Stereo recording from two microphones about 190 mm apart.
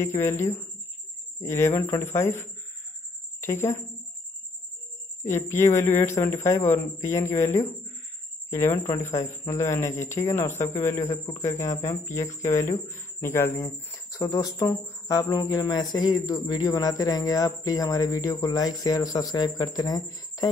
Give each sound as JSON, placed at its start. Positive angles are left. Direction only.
{"t": 0.0, "sound": "a man's voice", "side_deg": 15}
{"t": 5.2, "sound": "a man's voice", "side_deg": 15}